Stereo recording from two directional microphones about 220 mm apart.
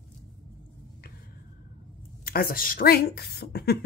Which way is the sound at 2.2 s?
40° left (ahead or behind).